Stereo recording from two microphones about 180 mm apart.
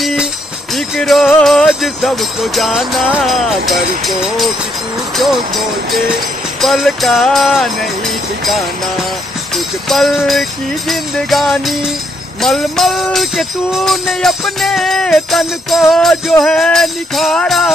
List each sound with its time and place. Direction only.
0.0 s jingle bell: centre (ahead or behind)
0.7 s speech: centre (ahead or behind)
5.1 s jingle bell: centre (ahead or behind)
9.8 s jingle bell: centre (ahead or behind)